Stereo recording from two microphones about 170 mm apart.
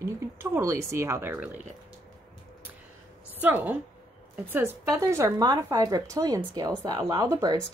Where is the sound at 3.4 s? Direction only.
10° right (ahead or behind).